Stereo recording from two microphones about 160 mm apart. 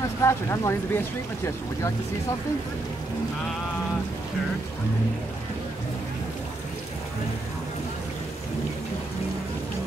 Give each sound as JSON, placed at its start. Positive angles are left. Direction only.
{"t": 0.2, "sound": "speech", "side_deg": 20}